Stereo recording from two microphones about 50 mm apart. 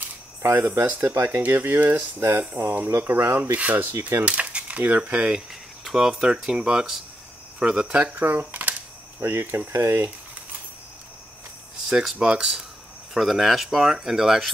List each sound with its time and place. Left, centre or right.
0.4 s speech: right
0.8 s speech: right
1.1 s speech: right
3.2 s speech: right
3.5 s speech: right
4.2 s coin: right
5.5 s a sound: centre
6.2 s speech: centre
7.9 s speech: right
9.2 s speech: right
12.2 s speech: centre
13.1 s speech: centre